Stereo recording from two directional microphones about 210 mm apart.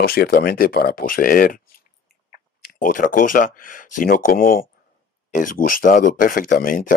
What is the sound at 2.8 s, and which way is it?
Speech, 40° left (ahead or behind).